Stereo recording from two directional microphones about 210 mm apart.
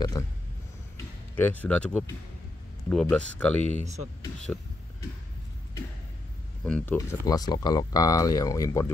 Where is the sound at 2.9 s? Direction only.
5° left (ahead or behind).